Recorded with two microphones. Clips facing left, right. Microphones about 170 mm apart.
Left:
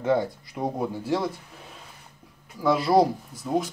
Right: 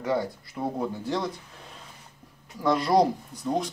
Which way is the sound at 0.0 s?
20° left (ahead or behind).